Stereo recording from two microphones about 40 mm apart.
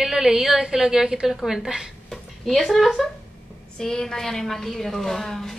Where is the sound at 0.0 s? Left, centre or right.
Centre.